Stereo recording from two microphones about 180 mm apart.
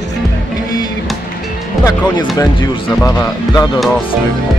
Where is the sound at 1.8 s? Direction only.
20° left (ahead or behind).